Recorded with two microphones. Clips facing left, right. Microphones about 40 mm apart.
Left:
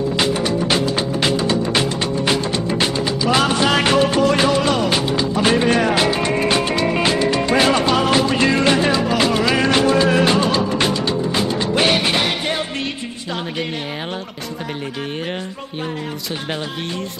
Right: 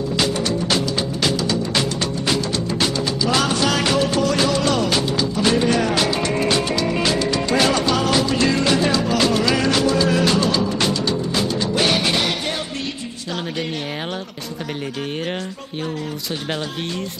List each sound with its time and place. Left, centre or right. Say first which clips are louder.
0.2 s music: left 1 dB; centre
9.7 s music: left 3 dB; left